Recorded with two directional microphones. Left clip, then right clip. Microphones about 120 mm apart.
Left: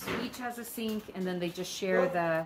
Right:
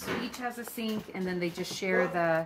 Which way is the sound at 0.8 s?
10° left (ahead or behind).